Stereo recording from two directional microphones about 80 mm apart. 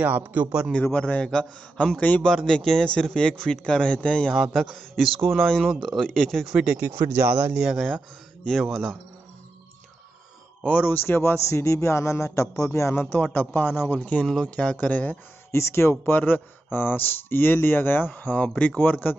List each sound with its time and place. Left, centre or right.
0.0 s speech: right
0.9 s speech: centre
6.4 s speech: centre
6.8 s speech: right
7.5 s speech: centre
8.5 s speech: centre
10.6 s a man's voice: centre
13.0 s speech: centre
15.5 s speech: left